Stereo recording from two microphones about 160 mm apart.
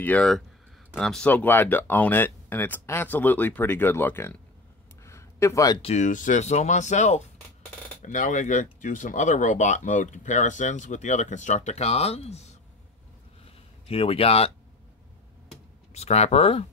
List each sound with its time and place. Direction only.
0.0 s speech: 5° left (ahead or behind)
5.0 s a sound: 15° left (ahead or behind)
5.8 s speech: 45° left (ahead or behind)
13.8 s speech: 35° left (ahead or behind)
15.9 s speech: 40° left (ahead or behind)